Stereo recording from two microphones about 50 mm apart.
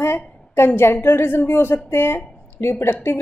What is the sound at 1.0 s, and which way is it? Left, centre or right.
A woman's voice, left.